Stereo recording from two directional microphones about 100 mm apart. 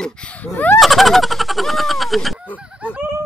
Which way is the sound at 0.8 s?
Centre (ahead or behind).